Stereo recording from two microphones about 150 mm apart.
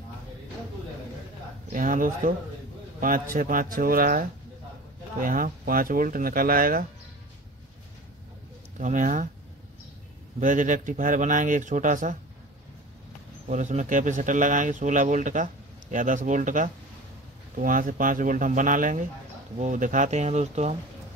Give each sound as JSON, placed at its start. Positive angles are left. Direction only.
{"t": 1.7, "sound": "speech", "side_deg": -65}
{"t": 8.7, "sound": "speech", "side_deg": -60}
{"t": 10.4, "sound": "speech", "side_deg": -60}
{"t": 13.5, "sound": "speech", "side_deg": -55}